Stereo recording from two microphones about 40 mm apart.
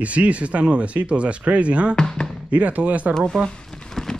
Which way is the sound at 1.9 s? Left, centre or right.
Centre.